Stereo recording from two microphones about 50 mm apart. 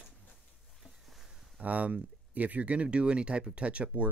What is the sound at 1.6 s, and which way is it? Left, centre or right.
Speech, right.